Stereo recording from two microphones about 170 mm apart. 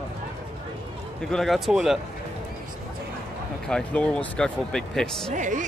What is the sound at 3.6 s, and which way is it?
Speech, 5° left (ahead or behind).